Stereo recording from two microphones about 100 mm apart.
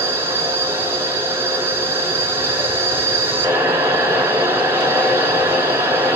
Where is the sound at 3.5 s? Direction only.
20° right (ahead or behind).